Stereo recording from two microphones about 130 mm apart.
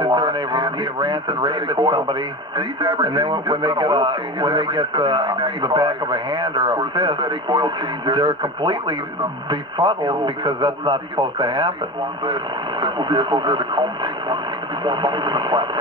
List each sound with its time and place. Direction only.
0.0 s speech: 40° right (ahead or behind)
12.8 s speech: 35° right (ahead or behind)